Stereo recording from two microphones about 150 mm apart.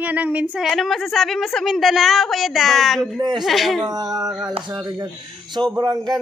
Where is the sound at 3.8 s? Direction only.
25° right (ahead or behind).